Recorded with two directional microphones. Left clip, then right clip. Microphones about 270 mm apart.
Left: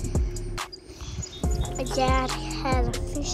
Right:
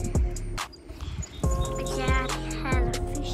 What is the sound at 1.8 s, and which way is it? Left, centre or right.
Music, centre.